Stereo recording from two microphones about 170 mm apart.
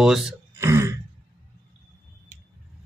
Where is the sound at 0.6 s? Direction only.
15° right (ahead or behind).